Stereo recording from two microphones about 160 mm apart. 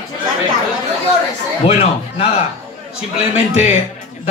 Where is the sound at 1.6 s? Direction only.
35° left (ahead or behind).